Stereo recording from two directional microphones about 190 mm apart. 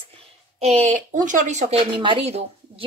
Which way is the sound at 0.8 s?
40° right (ahead or behind).